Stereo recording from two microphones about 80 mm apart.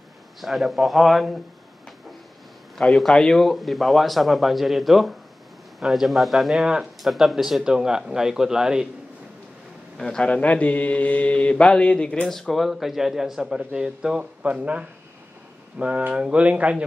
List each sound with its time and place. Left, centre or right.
0.4 s speech: centre
2.8 s speech: centre
9.9 s mantra: centre
13.7 s speech: centre